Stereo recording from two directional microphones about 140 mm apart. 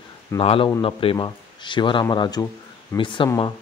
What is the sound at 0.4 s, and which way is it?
A man's voice, 45° left (ahead or behind).